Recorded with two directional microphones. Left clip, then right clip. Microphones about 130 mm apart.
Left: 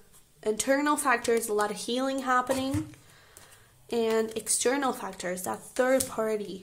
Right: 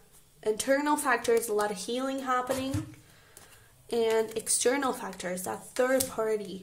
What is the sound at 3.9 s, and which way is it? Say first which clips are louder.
Speech: even; 25° left (ahead or behind).